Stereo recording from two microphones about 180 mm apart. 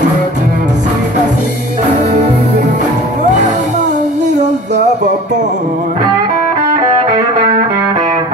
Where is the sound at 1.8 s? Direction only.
40° right (ahead or behind).